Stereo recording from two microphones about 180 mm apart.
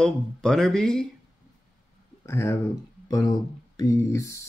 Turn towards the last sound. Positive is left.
turn(degrees=15)  # may be behind; listen again after turning